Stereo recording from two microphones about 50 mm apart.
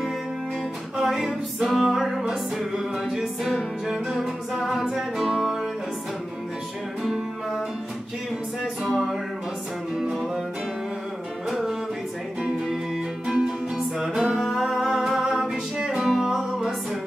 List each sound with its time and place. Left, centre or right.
0.9 s music: centre
7.0 s music: centre
8.8 s music: centre
10.1 s music: centre
11.4 s music: centre